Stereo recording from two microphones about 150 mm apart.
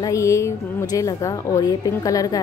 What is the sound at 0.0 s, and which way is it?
A woman's voice, 20° left (ahead or behind).